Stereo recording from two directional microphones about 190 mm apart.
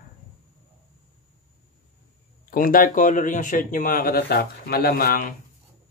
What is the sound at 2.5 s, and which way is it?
Speech, 45° left (ahead or behind).